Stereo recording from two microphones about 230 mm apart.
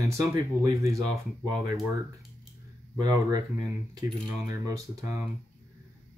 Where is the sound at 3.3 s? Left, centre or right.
Centre.